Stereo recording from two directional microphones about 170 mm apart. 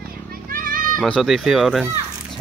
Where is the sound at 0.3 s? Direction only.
55° right (ahead or behind).